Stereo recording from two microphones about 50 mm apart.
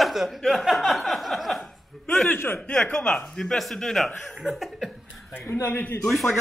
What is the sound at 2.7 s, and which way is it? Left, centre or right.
Speech, centre.